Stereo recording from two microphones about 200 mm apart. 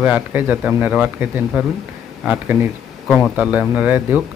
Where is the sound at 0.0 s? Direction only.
10° right (ahead or behind).